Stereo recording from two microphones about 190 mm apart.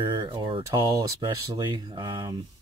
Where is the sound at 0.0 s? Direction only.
25° right (ahead or behind).